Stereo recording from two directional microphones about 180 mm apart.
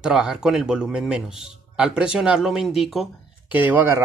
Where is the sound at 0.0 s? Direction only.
5° right (ahead or behind).